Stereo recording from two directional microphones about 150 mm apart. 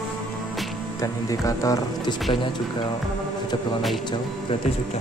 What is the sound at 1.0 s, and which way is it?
Speech, 20° left (ahead or behind).